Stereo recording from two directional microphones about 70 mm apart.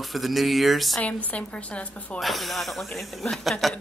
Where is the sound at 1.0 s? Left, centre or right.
Centre.